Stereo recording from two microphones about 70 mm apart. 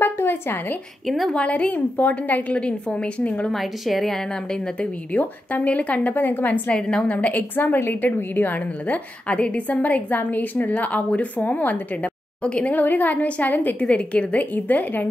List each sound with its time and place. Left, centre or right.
0.0 s a sound: left
1.0 s a woman's voice: centre
1.3 s a woman's voice: centre
3.5 s a woman's voice: centre
4.7 s a woman's voice: left